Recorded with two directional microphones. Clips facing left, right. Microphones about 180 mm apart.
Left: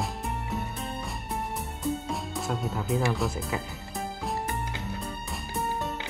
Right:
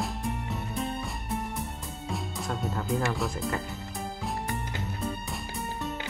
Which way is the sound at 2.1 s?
Centre (ahead or behind).